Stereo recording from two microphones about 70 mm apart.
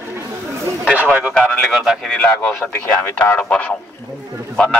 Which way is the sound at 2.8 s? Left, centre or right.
Left.